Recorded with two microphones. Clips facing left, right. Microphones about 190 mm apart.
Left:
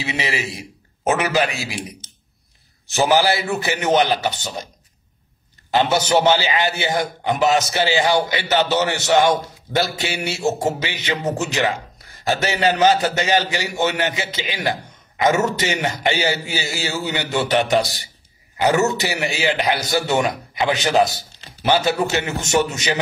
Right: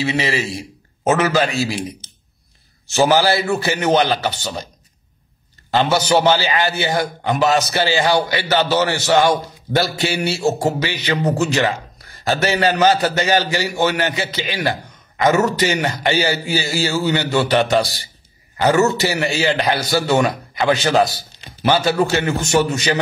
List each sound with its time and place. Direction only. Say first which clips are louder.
0.0 s a man's voice: right 5 dB; 15° left (ahead or behind)
2.9 s a man's voice: right 2 dB; 15° left (ahead or behind)
5.8 s a man's voice: right 1 dB; 20° left (ahead or behind)